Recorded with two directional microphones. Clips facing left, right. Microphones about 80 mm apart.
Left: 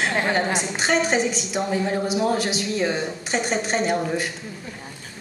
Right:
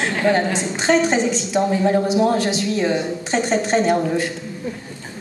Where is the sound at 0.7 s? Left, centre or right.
Right.